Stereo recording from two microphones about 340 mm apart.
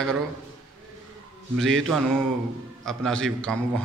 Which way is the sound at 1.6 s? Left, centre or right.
Centre.